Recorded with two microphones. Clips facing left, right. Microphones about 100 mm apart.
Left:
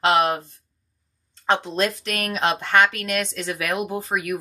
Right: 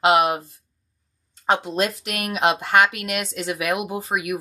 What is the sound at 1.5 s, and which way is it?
Speech, 5° right (ahead or behind).